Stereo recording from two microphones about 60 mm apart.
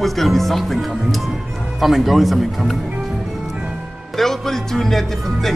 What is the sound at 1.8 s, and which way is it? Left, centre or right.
Speech, centre.